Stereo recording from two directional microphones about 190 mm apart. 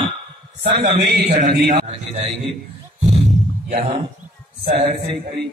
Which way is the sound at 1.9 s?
30° right (ahead or behind).